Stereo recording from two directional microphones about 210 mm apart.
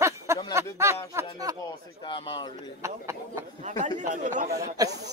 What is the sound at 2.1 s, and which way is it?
Speech, 25° left (ahead or behind).